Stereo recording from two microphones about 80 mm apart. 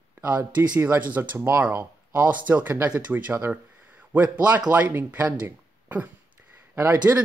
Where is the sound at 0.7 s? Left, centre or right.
Right.